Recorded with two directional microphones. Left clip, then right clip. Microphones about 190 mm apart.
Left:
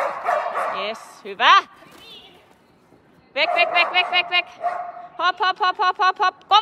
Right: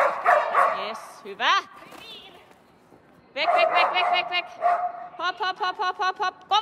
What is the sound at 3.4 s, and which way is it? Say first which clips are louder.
Speech: left 2 dB; 5° right (ahead or behind).